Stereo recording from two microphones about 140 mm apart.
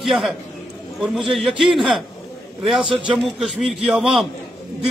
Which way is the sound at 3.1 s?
5° right (ahead or behind).